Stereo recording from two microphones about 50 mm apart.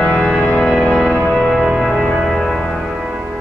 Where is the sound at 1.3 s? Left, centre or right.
Centre.